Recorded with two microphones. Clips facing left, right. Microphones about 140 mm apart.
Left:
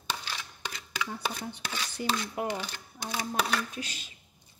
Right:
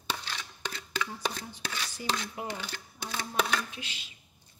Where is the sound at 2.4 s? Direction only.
60° left (ahead or behind).